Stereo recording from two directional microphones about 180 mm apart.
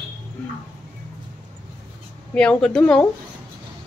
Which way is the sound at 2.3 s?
5° left (ahead or behind).